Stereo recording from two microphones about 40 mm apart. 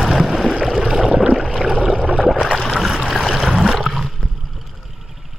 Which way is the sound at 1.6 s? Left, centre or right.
Centre.